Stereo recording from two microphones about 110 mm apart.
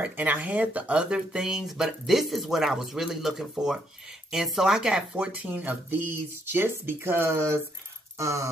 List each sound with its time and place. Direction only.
0.0 s speech: 15° right (ahead or behind)